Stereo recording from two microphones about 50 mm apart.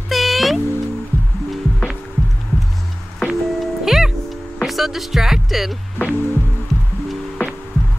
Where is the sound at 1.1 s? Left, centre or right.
Left.